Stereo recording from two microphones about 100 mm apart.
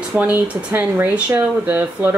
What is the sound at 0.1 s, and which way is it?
Speech, 15° right (ahead or behind).